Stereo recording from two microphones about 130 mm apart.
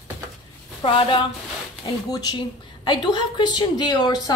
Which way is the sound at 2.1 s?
30° left (ahead or behind).